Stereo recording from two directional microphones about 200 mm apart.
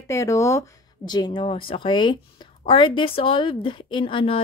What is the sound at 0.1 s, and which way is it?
Speech, 15° left (ahead or behind).